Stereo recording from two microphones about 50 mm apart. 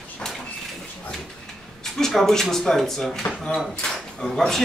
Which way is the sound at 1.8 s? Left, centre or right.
Centre.